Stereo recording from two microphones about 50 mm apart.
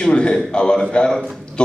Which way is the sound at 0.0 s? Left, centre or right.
Centre.